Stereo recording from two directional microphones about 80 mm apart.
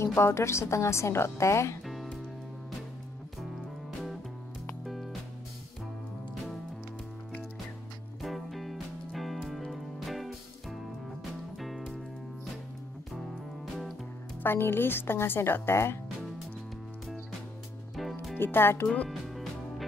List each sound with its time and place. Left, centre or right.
0.0 s a woman's voice: left
8.2 s music: centre
14.4 s speech: left
18.4 s speech: left
19.0 s music: centre